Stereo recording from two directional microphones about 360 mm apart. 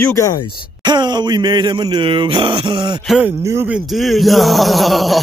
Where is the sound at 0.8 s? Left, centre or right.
Centre.